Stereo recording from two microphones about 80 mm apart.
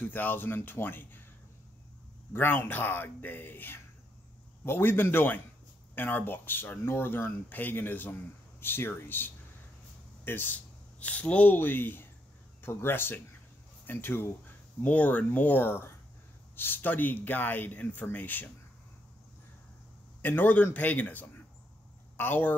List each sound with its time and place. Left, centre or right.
0.0 s speech: left
2.3 s speech: left
20.2 s speech: left